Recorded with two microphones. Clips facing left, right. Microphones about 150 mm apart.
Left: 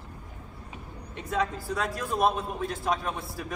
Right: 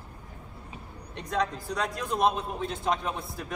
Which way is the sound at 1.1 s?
5° left (ahead or behind).